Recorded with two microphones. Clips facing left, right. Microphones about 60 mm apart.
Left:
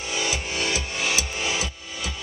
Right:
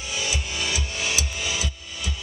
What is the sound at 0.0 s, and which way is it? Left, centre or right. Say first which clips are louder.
Music: left 2 dB; left.